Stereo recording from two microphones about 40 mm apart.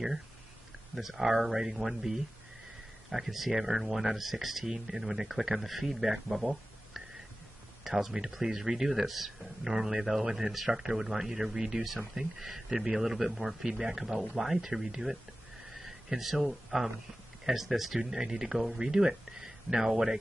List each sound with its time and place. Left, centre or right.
0.9 s speech: centre
7.8 s speech: centre